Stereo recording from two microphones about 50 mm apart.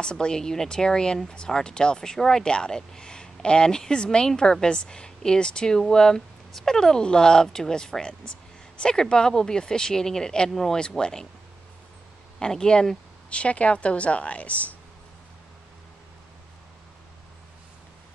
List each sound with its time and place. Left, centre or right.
0.0 s speech: centre
12.4 s speech: centre